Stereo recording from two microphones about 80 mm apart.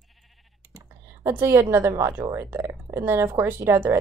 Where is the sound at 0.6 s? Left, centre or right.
Right.